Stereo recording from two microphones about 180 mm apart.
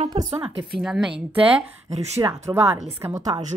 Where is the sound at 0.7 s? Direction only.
5° right (ahead or behind).